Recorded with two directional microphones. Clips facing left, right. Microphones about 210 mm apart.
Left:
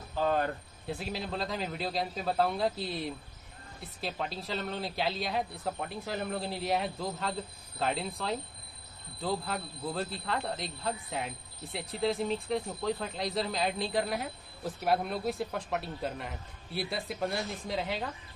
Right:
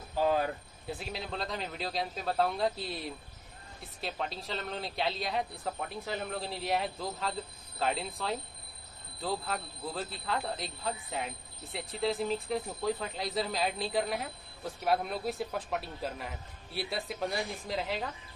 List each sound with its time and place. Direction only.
0.2 s speech: 5° right (ahead or behind)